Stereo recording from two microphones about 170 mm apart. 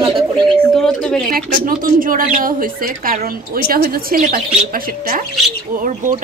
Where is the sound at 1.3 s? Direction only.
55° right (ahead or behind).